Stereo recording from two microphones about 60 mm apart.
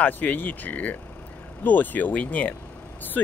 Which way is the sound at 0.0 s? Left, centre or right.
Left.